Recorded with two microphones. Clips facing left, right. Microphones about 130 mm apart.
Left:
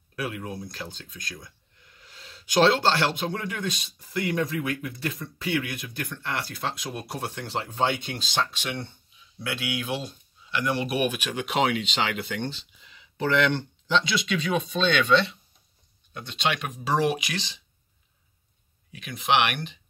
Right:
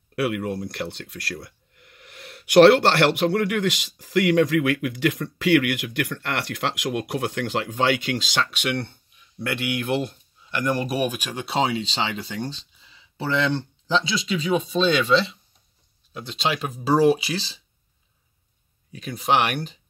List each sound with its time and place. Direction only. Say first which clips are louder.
0.1 s speech: right 8 dB; 70° right (ahead or behind); by 11.1 s 40° right (ahead or behind)
11.6 s speech: even; 30° right (ahead or behind)
16.3 s speech: right 2 dB; 30° right (ahead or behind)
18.9 s speech: right 2 dB; 35° right (ahead or behind)